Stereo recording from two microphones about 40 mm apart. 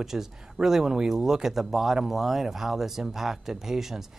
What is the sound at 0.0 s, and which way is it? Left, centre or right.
Speech, centre.